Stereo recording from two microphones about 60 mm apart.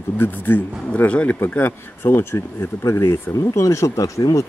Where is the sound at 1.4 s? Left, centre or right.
Left.